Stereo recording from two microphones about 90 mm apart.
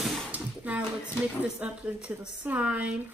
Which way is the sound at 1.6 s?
10° right (ahead or behind).